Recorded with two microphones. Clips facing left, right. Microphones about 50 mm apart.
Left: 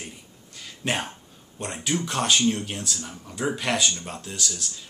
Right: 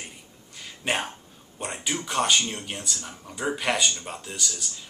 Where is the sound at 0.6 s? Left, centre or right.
Centre.